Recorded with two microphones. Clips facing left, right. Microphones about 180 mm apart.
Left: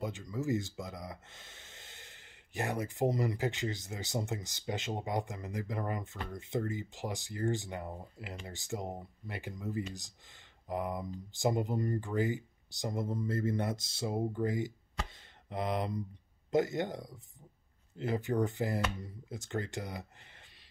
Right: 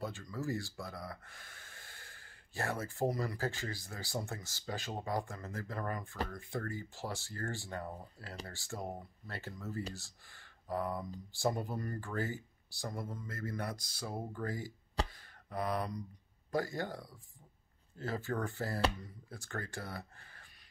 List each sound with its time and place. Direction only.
0.0 s speech: 20° left (ahead or behind)
15.0 s a sound: 25° left (ahead or behind)
16.4 s speech: 20° left (ahead or behind)